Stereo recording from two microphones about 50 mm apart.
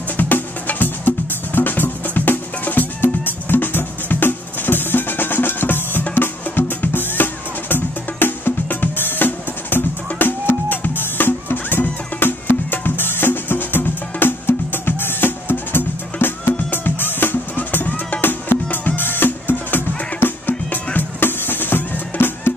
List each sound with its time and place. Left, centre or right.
0.2 s music: left